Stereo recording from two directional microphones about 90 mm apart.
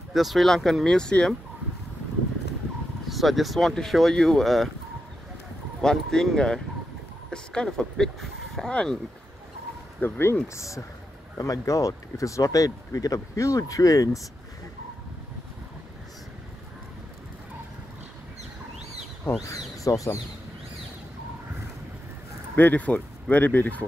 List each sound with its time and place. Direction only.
0.1 s speech: centre (ahead or behind)
3.1 s speech: centre (ahead or behind)
5.8 s speech: 5° left (ahead or behind)
9.9 s speech: 25° left (ahead or behind)
10.5 s speech: 35° left (ahead or behind)
19.5 s a sound: 40° left (ahead or behind)
22.6 s speech: 20° left (ahead or behind)